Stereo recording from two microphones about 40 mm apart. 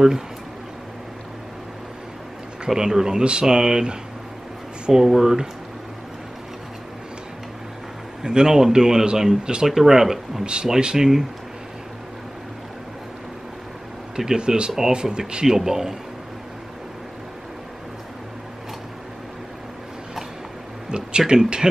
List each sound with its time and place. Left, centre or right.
2.7 s speech: centre
8.2 s speech: centre
10.4 s speech: right
14.1 s speech: centre
21.3 s speech: centre